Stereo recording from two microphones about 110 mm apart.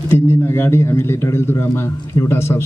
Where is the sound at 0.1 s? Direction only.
20° left (ahead or behind).